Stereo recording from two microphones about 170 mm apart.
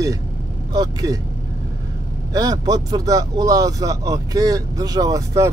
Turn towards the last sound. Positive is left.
turn(degrees=-20)  # may be behind; listen again after turning